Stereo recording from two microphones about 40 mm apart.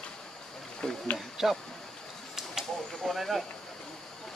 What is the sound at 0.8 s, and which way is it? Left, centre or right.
Speech, centre.